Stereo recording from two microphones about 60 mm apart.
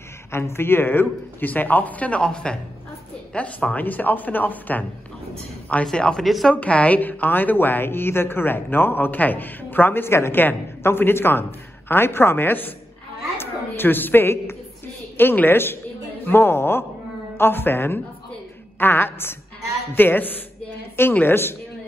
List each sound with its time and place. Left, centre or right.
0.3 s a man's voice: left
5.9 s speech: centre
6.2 s a woman's voice: centre
6.5 s a woman's voice: left